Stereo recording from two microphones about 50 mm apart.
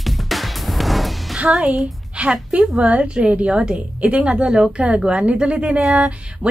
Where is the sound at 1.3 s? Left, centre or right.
Centre.